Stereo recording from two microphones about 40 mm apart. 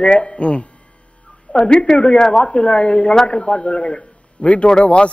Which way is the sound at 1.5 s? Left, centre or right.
Centre.